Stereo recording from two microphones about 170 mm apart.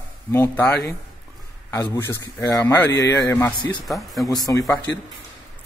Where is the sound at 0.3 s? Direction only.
15° left (ahead or behind).